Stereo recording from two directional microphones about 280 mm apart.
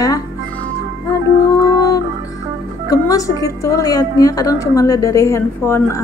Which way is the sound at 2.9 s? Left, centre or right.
Centre.